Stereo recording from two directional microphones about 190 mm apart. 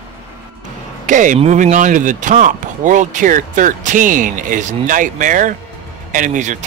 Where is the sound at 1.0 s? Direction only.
40° right (ahead or behind).